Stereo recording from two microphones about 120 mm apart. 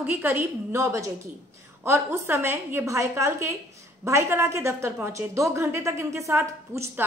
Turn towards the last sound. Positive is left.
turn(degrees=-25)  # may be behind; listen again after turning